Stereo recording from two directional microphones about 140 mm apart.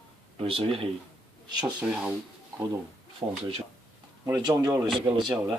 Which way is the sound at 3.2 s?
30° right (ahead or behind).